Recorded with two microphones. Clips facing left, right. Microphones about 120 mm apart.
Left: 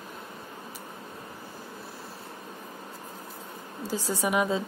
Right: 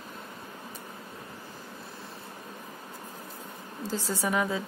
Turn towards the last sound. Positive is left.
turn(degrees=15)  # may be behind; listen again after turning